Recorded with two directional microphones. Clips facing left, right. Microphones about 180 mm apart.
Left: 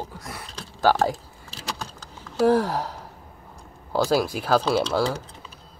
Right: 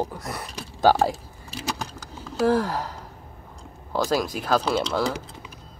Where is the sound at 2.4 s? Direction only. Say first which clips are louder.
Left 2 dB; 15° left (ahead or behind).